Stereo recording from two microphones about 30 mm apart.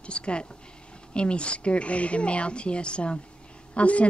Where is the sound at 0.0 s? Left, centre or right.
Left.